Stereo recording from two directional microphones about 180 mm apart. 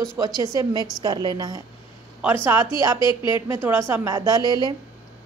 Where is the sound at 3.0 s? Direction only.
25° left (ahead or behind).